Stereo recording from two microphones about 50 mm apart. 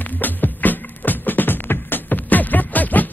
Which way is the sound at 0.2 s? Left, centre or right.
Left.